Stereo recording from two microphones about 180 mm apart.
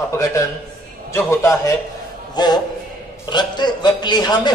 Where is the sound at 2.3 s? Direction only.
25° left (ahead or behind).